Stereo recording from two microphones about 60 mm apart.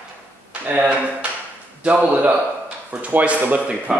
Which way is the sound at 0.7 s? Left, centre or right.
Right.